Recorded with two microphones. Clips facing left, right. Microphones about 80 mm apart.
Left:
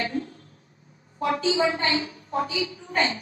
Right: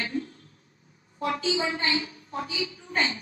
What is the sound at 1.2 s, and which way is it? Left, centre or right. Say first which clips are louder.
A woman's voice: left 4 dB; left.